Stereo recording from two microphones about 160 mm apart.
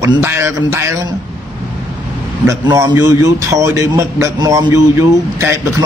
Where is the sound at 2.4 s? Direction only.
20° right (ahead or behind).